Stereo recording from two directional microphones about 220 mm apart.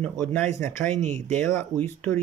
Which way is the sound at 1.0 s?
35° right (ahead or behind).